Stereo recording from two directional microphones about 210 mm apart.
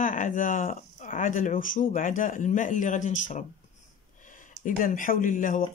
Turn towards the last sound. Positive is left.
turn(degrees=40)  # may be behind; listen again after turning